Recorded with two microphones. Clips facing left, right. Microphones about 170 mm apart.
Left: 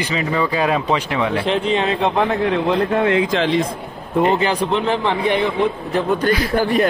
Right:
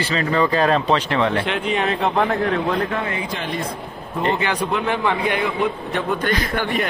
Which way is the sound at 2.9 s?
75° left (ahead or behind).